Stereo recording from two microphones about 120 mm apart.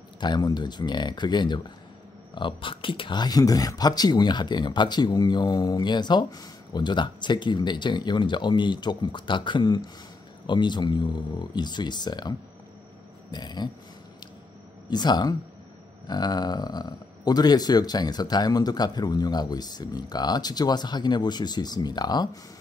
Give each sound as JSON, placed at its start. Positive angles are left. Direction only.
{"t": 0.2, "sound": "speech", "side_deg": 35}
{"t": 14.9, "sound": "speech", "side_deg": 35}